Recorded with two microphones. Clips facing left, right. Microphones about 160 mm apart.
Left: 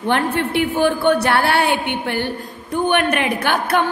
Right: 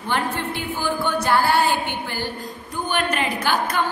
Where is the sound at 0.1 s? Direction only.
65° left (ahead or behind).